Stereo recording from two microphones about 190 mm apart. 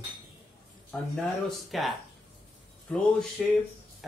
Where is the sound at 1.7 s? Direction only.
Centre (ahead or behind).